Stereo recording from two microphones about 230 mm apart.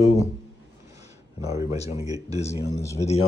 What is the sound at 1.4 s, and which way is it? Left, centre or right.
Speech, centre.